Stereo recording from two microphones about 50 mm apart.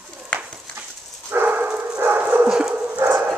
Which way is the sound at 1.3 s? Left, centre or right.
Right.